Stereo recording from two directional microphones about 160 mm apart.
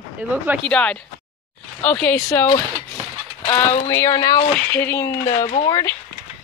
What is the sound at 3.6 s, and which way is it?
Speech, 15° left (ahead or behind).